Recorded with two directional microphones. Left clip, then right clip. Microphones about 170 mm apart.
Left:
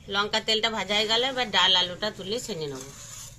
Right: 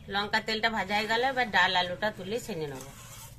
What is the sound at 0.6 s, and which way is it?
A woman's voice, 10° left (ahead or behind).